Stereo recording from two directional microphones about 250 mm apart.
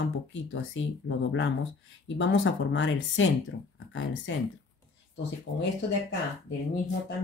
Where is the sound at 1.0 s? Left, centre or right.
Left.